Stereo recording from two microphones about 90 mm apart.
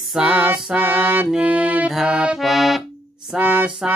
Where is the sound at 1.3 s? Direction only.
10° right (ahead or behind).